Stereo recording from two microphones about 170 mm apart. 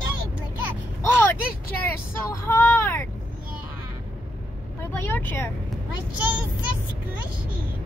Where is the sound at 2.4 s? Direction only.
15° left (ahead or behind).